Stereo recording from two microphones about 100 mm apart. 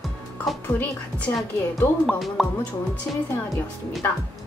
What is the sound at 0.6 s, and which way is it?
A woman's voice, 20° left (ahead or behind).